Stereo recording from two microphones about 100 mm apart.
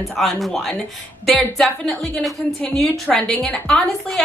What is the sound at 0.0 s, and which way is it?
A woman's voice, centre (ahead or behind).